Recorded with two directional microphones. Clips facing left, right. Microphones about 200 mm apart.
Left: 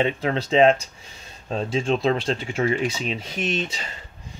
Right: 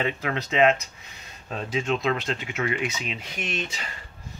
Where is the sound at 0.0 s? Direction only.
30° left (ahead or behind).